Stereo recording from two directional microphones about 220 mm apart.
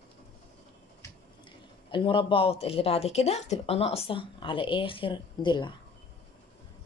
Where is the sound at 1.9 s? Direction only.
20° left (ahead or behind).